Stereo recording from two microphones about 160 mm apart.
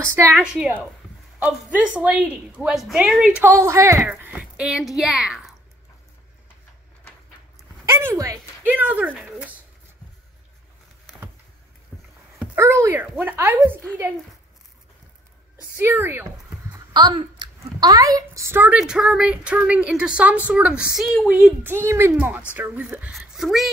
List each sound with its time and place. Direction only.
0.0 s a woman's voice: 15° right (ahead or behind)
3.5 s a woman's voice: 15° right (ahead or behind)
7.9 s speech: 15° right (ahead or behind)
12.8 s a woman's voice: 15° right (ahead or behind)
15.7 s a woman's voice: 15° right (ahead or behind)
16.7 s a sound: 30° right (ahead or behind)
17.6 s a woman's voice: 25° right (ahead or behind); by 23.7 s centre (ahead or behind)